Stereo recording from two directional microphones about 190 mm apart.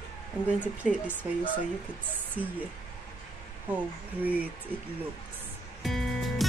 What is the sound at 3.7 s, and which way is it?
Speech, 10° right (ahead or behind).